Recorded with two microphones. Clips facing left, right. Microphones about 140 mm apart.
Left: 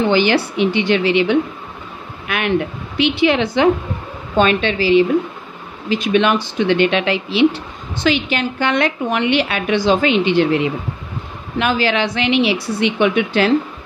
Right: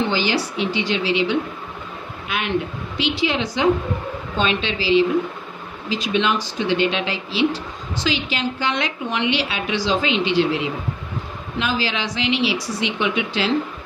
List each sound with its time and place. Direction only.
0.1 s a woman's voice: 60° left (ahead or behind)